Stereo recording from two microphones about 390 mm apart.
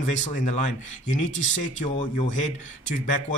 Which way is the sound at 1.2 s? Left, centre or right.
Left.